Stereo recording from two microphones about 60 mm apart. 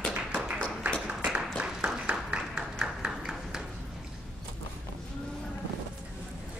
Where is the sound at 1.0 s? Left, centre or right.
Centre.